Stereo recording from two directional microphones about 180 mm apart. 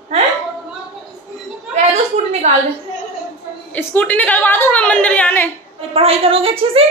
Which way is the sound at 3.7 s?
10° left (ahead or behind).